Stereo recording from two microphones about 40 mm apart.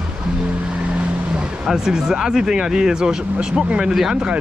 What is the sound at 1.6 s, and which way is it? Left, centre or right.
Speech, centre.